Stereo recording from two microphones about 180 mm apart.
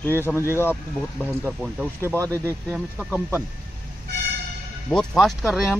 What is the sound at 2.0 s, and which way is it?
Speech, 15° right (ahead or behind).